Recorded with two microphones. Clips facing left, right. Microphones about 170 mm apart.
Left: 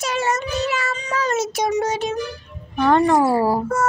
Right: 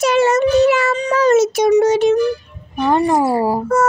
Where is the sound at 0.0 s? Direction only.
70° right (ahead or behind).